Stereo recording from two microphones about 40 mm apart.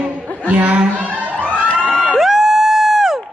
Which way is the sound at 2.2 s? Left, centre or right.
Centre.